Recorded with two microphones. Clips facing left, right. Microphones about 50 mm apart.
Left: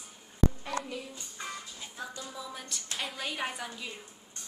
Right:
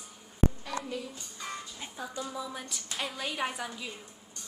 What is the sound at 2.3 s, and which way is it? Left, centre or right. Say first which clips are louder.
A woman's voice: right 3 dB; centre.